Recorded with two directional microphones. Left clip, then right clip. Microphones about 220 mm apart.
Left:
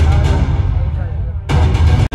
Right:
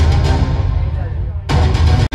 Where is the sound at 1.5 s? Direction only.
10° right (ahead or behind).